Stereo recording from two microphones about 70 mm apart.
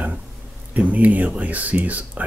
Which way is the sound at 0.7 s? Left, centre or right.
Right.